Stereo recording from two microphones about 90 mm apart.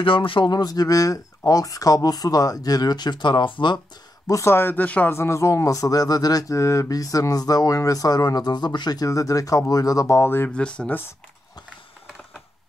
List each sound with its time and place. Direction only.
0.0 s speech: 75° left (ahead or behind)
0.5 s speech: 45° left (ahead or behind)
4.3 s speech: 30° left (ahead or behind)
5.1 s speech: 30° left (ahead or behind)
10.5 s speech: 10° left (ahead or behind)